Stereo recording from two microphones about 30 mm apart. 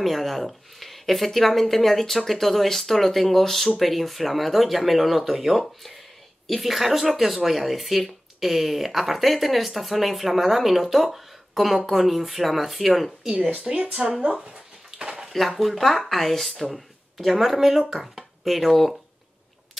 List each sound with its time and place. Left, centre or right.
0.0 s speech: centre
14.2 s speech: right
15.0 s a sound: right
15.3 s speech: centre